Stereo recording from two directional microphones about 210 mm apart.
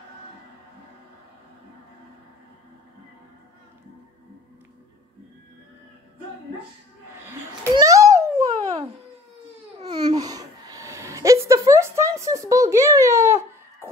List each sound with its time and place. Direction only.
7.7 s babbling: 15° right (ahead or behind)
8.4 s a sound: 30° right (ahead or behind)
9.8 s babbling: 20° right (ahead or behind)